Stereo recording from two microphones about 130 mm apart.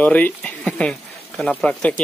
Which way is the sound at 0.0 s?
10° left (ahead or behind).